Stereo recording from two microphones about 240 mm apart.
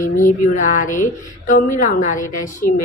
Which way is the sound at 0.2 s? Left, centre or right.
Left.